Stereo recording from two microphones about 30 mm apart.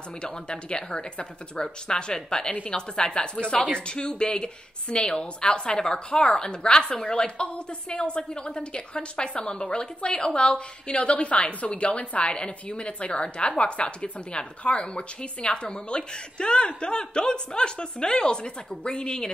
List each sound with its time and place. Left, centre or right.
0.2 s a woman's voice: left
11.4 s a woman's voice: left